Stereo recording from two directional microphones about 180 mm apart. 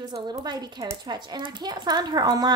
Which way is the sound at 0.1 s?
25° right (ahead or behind).